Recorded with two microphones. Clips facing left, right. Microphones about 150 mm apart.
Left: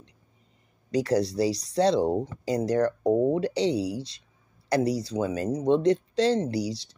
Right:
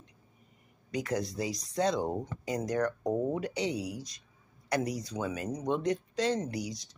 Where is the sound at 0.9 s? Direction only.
35° left (ahead or behind).